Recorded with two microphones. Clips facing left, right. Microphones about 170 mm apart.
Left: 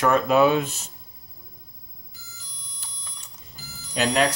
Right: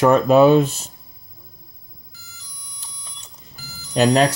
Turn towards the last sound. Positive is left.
turn(degrees=-35)  # may be behind; listen again after turning